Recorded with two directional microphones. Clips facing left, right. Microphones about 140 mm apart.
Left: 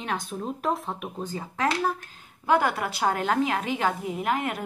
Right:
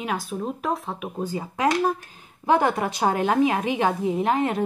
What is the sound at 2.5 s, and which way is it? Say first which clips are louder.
A woman's voice: right 3 dB; 25° right (ahead or behind).